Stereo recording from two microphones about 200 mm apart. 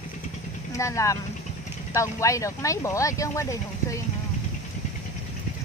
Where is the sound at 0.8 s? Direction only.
15° left (ahead or behind).